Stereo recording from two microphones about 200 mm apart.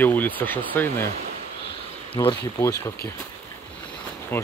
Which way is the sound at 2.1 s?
15° left (ahead or behind).